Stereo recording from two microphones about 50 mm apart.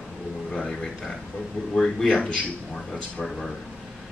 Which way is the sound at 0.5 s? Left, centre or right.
Centre.